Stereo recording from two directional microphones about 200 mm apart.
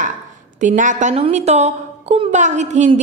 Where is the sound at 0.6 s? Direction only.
40° right (ahead or behind).